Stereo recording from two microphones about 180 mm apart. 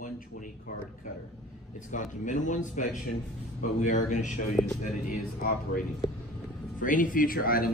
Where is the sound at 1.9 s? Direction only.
45° left (ahead or behind).